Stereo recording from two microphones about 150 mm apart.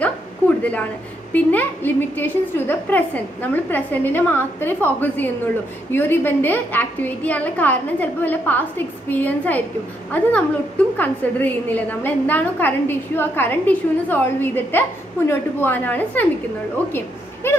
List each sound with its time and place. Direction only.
0.6 s a woman's voice: 10° left (ahead or behind)